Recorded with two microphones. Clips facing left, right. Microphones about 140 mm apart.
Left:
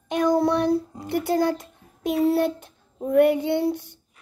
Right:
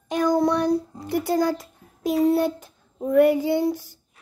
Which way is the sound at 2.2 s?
Centre (ahead or behind).